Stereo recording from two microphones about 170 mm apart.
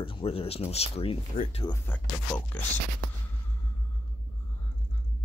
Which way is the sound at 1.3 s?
55° left (ahead or behind).